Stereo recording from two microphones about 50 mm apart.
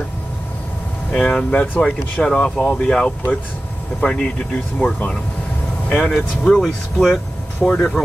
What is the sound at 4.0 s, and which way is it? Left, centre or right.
Speech, centre.